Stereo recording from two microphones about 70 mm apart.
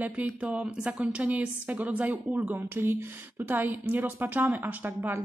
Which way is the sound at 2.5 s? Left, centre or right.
Right.